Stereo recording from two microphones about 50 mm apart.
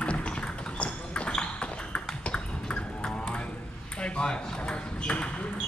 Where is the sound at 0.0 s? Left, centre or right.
Left.